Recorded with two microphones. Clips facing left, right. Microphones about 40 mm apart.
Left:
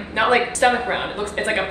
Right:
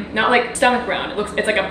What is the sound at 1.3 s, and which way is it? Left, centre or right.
Speech, right.